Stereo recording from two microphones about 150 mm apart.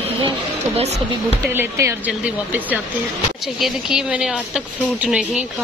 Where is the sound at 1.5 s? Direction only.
15° right (ahead or behind).